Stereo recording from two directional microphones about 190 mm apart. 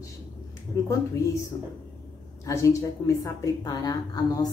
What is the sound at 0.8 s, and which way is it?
Speech, 15° left (ahead or behind).